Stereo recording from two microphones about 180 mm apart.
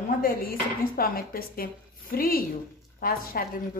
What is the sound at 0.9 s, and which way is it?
A woman's voice, 55° left (ahead or behind).